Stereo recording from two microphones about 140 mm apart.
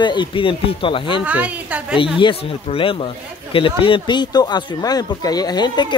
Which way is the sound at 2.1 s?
35° left (ahead or behind).